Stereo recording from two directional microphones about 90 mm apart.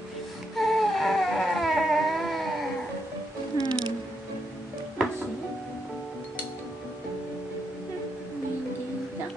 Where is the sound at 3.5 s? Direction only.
50° right (ahead or behind).